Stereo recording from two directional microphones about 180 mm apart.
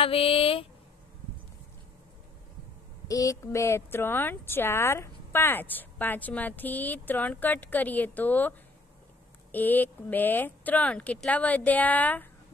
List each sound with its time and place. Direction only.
0.0 s speech: 30° left (ahead or behind)
3.1 s speech: 20° left (ahead or behind)